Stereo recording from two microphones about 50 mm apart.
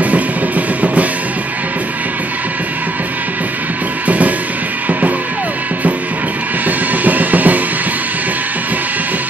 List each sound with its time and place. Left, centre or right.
0.0 s music: right
7.1 s music: right